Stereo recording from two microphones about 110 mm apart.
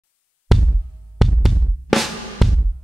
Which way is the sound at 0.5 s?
Centre (ahead or behind).